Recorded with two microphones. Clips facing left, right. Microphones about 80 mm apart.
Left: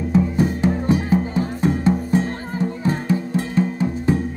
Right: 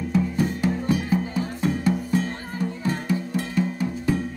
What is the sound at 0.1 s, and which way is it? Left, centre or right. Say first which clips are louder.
Music: left 5 dB; left.